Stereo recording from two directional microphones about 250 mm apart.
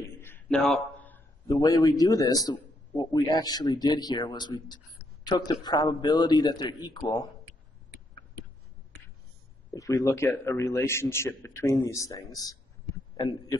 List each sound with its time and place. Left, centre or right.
0.2 s a man's voice: centre
9.8 s a man's voice: centre